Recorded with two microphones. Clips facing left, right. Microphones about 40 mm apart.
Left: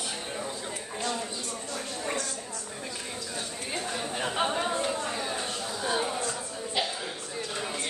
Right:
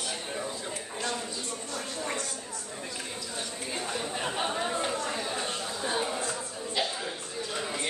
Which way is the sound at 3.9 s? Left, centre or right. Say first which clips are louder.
Left 3 dB; centre.